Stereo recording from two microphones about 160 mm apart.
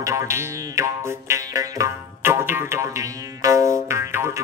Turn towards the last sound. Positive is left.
turn(degrees=-15)  # may be behind; listen again after turning